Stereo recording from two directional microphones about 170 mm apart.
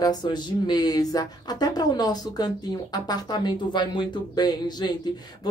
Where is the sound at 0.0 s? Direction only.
25° left (ahead or behind).